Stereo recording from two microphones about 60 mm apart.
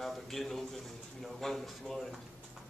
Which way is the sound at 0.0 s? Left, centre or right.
Centre.